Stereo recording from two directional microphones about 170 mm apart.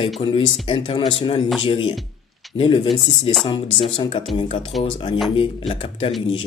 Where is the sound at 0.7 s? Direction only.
30° left (ahead or behind).